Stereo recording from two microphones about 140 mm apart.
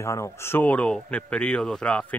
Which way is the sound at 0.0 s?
20° left (ahead or behind).